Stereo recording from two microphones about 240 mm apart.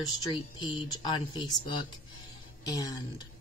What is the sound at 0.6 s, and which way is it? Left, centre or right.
Speech, centre.